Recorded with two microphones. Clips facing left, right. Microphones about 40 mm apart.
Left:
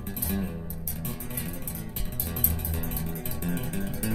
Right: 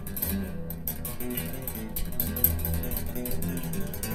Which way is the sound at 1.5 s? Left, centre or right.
Right.